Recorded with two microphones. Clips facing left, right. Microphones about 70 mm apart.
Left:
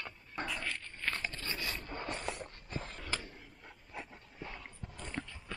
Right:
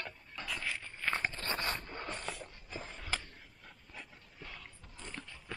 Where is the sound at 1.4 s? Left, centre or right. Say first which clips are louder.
Right 3 dB; right.